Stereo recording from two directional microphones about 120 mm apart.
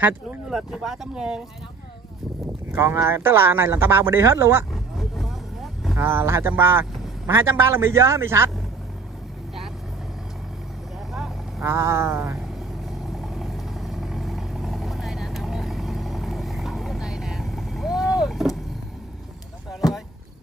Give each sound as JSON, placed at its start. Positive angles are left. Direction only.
{"t": 0.5, "sound": "speech", "side_deg": -5}
{"t": 2.7, "sound": "a man's voice", "side_deg": -20}
{"t": 4.9, "sound": "vehicle", "side_deg": 0}
{"t": 5.9, "sound": "a man's voice", "side_deg": -20}
{"t": 11.6, "sound": "a man's voice", "side_deg": -20}
{"t": 13.2, "sound": "vehicle", "side_deg": 0}
{"t": 19.8, "sound": "a sound", "side_deg": 30}